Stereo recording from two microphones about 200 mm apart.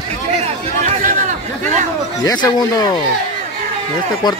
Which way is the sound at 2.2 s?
20° left (ahead or behind).